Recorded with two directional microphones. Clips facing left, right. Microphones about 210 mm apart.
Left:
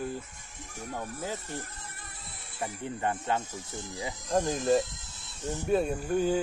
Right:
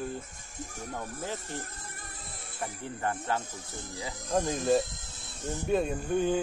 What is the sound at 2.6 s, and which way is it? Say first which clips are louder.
Speech: left 2 dB; 20° left (ahead or behind).